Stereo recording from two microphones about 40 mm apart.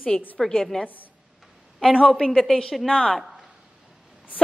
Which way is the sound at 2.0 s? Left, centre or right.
Centre.